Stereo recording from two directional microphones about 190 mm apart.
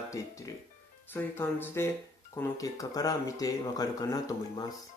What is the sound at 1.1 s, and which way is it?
Speech, 10° left (ahead or behind).